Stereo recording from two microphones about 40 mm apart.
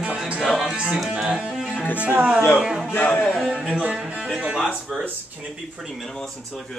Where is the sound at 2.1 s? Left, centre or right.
Right.